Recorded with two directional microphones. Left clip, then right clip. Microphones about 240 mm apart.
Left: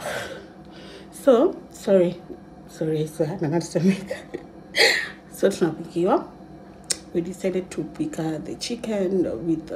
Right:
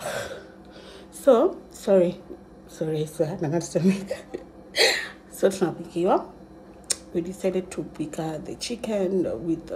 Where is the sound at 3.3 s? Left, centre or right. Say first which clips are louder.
Left 1 dB; centre.